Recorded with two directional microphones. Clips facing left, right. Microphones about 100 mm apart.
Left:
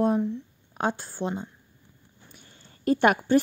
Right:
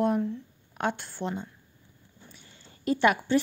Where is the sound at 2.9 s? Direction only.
45° left (ahead or behind).